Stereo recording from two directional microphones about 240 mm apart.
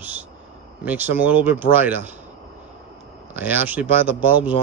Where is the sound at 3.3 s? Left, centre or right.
Centre.